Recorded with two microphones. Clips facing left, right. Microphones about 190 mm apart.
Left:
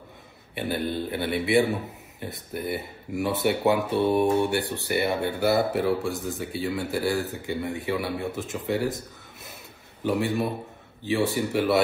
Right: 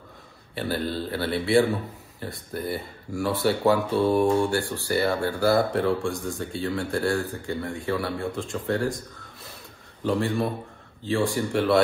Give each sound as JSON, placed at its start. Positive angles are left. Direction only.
{"t": 0.6, "sound": "a man's voice", "side_deg": 20}
{"t": 5.6, "sound": "speech", "side_deg": 5}
{"t": 7.4, "sound": "a man's voice", "side_deg": 20}
{"t": 8.6, "sound": "speech", "side_deg": 5}
{"t": 10.0, "sound": "speech", "side_deg": 5}